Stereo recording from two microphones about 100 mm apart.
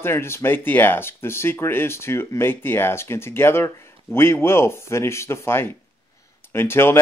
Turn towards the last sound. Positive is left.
turn(degrees=25)  # may be behind; listen again after turning